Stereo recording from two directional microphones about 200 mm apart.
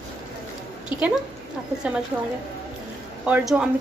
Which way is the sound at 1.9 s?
5° right (ahead or behind).